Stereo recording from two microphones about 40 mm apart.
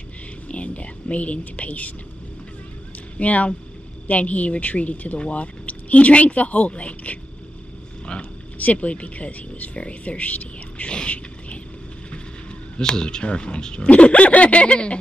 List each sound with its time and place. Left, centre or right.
0.5 s speech: left
3.2 s speech: left
8.2 s speech: left
10.9 s a sound: left
12.7 s speech: left